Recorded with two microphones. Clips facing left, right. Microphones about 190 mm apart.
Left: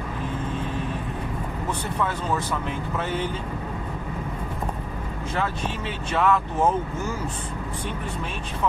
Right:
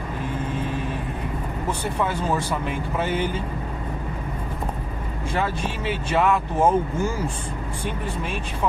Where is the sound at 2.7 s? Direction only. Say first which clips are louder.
Right 3 dB; 10° right (ahead or behind).